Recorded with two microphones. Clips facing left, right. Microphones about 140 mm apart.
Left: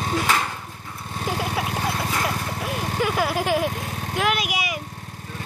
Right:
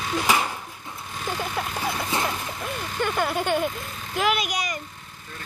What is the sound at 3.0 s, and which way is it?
Vehicle, 5° left (ahead or behind).